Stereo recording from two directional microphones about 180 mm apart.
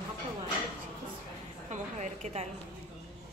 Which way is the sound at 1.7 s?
40° right (ahead or behind).